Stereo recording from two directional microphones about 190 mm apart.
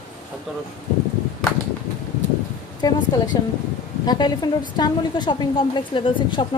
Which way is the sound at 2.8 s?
20° left (ahead or behind).